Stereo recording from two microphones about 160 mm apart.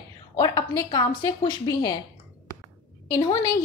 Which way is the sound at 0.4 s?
25° left (ahead or behind).